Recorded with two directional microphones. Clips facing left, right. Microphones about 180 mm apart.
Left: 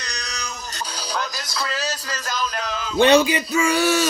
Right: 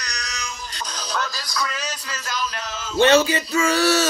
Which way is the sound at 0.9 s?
10° left (ahead or behind).